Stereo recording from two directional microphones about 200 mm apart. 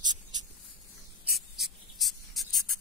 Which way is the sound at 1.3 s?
Centre (ahead or behind).